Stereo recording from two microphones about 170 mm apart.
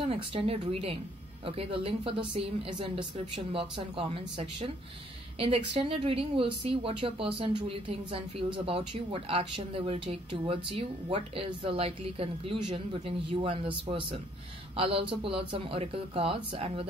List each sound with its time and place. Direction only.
0.1 s a man's voice: 35° right (ahead or behind)